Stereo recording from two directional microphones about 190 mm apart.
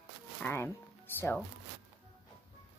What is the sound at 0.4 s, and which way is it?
Music, 10° left (ahead or behind).